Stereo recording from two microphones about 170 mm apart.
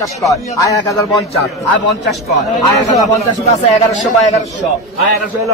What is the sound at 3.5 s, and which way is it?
Speech, 45° left (ahead or behind).